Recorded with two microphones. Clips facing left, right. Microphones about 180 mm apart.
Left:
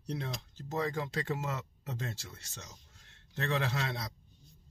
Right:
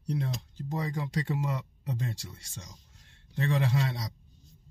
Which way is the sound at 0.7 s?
10° right (ahead or behind).